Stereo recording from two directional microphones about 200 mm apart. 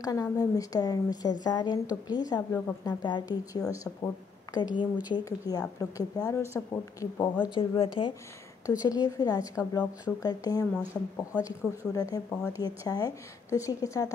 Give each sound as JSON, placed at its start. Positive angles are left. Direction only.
{"t": 0.0, "sound": "a woman's voice", "side_deg": 20}
{"t": 7.5, "sound": "a woman's voice", "side_deg": 25}